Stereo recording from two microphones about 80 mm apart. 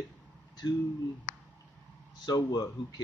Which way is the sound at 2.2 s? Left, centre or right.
Left.